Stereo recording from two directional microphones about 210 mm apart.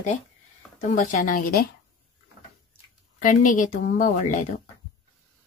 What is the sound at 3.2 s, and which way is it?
Speech, 40° left (ahead or behind).